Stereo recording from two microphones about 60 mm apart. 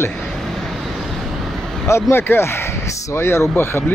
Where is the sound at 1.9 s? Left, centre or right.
Left.